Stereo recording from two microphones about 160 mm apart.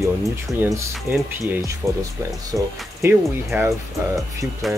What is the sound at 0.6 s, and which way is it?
Speech, 20° right (ahead or behind).